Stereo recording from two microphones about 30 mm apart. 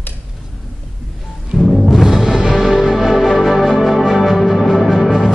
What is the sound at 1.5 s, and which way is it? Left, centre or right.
Music, centre.